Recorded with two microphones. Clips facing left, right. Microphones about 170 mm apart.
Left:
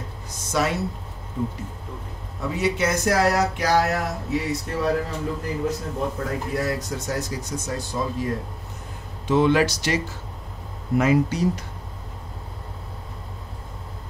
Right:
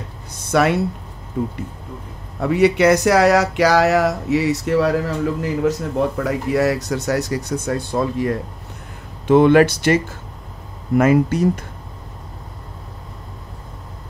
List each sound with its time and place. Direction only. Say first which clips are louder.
0.5 s speech: right 7 dB; 65° right (ahead or behind)
2.4 s speech: right 9 dB; 65° right (ahead or behind)